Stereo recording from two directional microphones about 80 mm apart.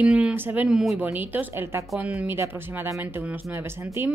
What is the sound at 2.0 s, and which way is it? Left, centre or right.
Speech, centre.